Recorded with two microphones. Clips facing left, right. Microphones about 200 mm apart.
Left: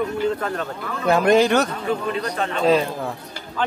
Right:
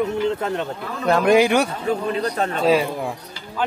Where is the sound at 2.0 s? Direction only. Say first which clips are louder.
Right 2 dB; 40° right (ahead or behind).